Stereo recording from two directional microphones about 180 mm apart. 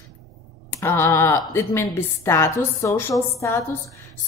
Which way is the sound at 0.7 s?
15° left (ahead or behind).